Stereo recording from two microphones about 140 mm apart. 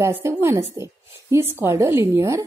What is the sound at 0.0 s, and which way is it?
Speech, 20° right (ahead or behind).